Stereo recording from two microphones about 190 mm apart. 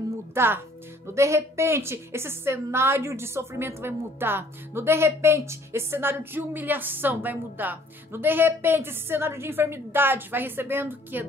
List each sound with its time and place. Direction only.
0.3 s a woman's voice: 10° right (ahead or behind)